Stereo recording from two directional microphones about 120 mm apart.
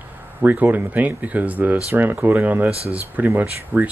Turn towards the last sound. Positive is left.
turn(degrees=-15)  # may be behind; listen again after turning